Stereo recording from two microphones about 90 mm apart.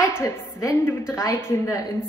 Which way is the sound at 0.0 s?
30° left (ahead or behind).